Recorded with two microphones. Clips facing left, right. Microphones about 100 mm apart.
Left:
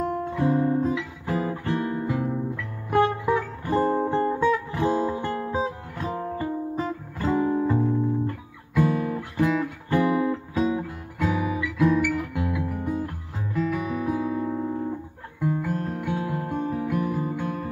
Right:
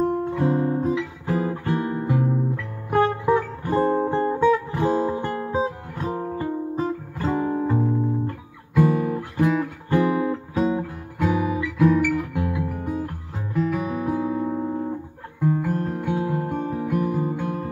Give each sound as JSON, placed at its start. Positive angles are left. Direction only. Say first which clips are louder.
{"t": 0.0, "sound": "guitar", "louder": "right 3 dB", "side_deg": -20}
{"t": 2.5, "sound": "music", "louder": "right 1 dB", "side_deg": -35}
{"t": 7.5, "sound": "music", "louder": "even", "side_deg": -15}
{"t": 9.0, "sound": "guitar", "louder": "right 2 dB", "side_deg": -20}
{"t": 10.0, "sound": "music", "louder": "left 2 dB", "side_deg": -45}
{"t": 10.3, "sound": "music", "louder": "right 2 dB", "side_deg": -30}
{"t": 11.3, "sound": "guitar", "louder": "right 3 dB", "side_deg": -40}
{"t": 11.6, "sound": "guitar", "louder": "right 2 dB", "side_deg": -25}
{"t": 15.4, "sound": "music", "louder": "right 3 dB", "side_deg": -30}